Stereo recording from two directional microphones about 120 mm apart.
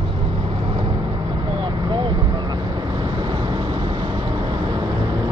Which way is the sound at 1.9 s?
40° right (ahead or behind).